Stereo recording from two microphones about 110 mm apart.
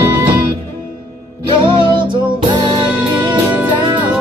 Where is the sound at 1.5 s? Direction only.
50° right (ahead or behind).